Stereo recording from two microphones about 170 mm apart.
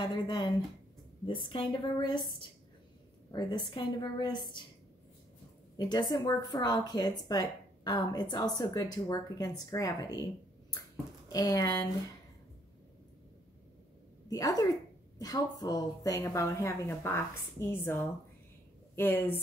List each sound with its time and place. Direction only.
0.0 s a woman's voice: 30° left (ahead or behind)
3.3 s a woman's voice: 25° left (ahead or behind)
5.8 s a woman's voice: 25° left (ahead or behind)
14.3 s a woman's voice: 20° left (ahead or behind)